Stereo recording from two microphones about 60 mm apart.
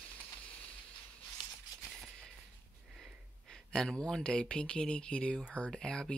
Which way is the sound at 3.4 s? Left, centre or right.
Centre.